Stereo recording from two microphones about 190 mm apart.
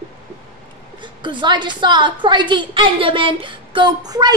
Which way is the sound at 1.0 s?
25° right (ahead or behind).